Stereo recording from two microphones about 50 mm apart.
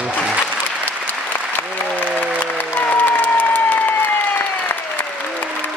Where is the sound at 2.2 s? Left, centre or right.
Left.